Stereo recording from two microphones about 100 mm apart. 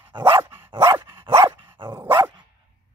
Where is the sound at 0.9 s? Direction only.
55° right (ahead or behind).